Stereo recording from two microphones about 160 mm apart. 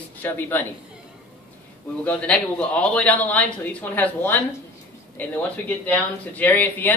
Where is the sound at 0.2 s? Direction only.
15° left (ahead or behind).